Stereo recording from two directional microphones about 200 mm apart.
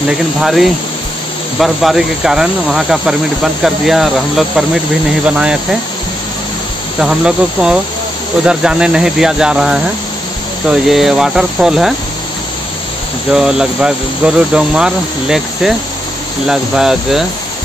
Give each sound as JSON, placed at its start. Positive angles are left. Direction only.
{"t": 0.4, "sound": "speech", "side_deg": 0}
{"t": 7.0, "sound": "speech", "side_deg": -5}
{"t": 13.3, "sound": "speech", "side_deg": -5}